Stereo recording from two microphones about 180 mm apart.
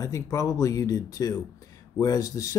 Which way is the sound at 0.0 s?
20° left (ahead or behind).